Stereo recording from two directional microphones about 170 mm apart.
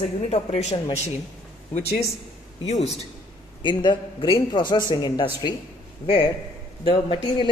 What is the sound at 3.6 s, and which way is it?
A man's voice, 25° left (ahead or behind).